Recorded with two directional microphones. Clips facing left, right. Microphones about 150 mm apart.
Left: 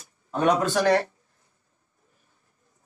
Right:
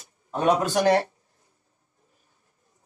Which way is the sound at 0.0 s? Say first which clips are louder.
Even; 25° right (ahead or behind).